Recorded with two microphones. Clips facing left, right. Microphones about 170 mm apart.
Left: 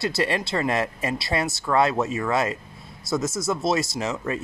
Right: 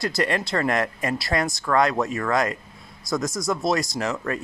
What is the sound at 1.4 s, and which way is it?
Speech, 5° left (ahead or behind).